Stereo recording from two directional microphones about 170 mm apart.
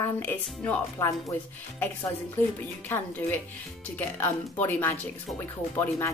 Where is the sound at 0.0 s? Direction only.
10° left (ahead or behind).